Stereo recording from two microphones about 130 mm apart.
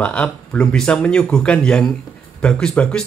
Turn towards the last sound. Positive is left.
turn(degrees=5)  # may be behind; listen again after turning